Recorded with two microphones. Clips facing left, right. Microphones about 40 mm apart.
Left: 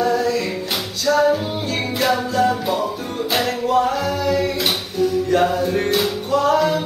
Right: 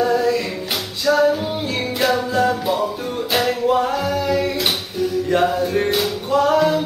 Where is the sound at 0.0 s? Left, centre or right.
Centre.